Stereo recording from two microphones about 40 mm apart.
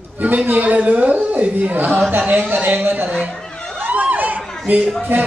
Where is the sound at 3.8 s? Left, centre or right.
Right.